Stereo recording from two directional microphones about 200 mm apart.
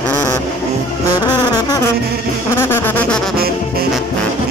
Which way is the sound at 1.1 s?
20° left (ahead or behind).